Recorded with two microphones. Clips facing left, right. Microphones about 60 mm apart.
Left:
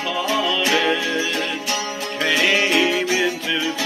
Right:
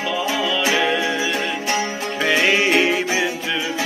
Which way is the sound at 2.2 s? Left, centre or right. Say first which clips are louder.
Right 1 dB; right.